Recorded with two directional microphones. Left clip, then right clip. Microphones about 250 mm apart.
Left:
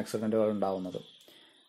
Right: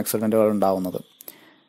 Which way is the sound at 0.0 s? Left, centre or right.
Right.